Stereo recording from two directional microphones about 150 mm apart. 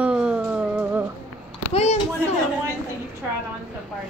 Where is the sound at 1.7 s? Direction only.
45° left (ahead or behind).